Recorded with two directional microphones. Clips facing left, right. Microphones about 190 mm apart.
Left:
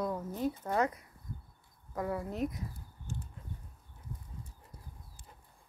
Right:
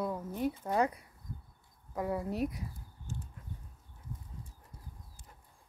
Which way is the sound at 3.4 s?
25° left (ahead or behind).